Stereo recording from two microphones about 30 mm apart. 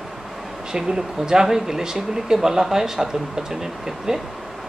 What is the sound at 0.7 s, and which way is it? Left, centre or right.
Speech, centre.